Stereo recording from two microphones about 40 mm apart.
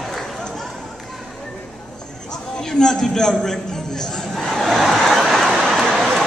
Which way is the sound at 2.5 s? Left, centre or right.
Centre.